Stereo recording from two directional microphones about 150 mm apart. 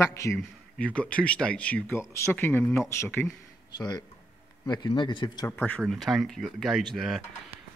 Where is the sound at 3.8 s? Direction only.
30° left (ahead or behind).